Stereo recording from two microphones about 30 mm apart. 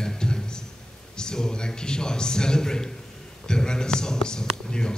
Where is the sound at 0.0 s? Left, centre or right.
Left.